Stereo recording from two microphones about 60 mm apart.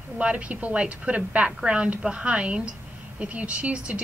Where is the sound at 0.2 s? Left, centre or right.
Centre.